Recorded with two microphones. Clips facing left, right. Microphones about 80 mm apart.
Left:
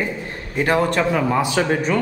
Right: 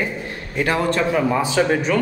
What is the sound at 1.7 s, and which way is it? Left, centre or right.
Speech, left.